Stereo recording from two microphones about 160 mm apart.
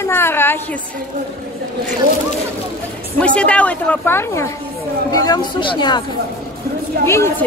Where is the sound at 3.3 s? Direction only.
10° left (ahead or behind); by 6.0 s 25° left (ahead or behind).